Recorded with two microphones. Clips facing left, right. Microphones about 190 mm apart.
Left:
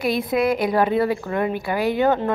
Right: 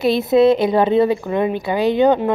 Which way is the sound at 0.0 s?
25° right (ahead or behind).